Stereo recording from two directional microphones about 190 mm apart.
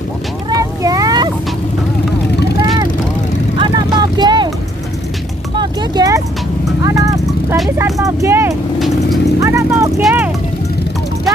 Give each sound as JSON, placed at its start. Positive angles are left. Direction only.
{"t": 0.5, "sound": "vehicle", "side_deg": -20}
{"t": 3.5, "sound": "vehicle", "side_deg": -25}
{"t": 5.6, "sound": "a sound", "side_deg": -20}
{"t": 6.8, "sound": "clip-clop", "side_deg": -15}
{"t": 7.7, "sound": "vehicle", "side_deg": -15}
{"t": 8.7, "sound": "vehicle", "side_deg": 0}
{"t": 9.4, "sound": "vehicle", "side_deg": -15}